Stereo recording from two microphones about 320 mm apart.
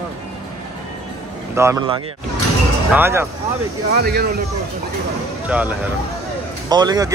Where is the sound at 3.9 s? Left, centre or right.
Right.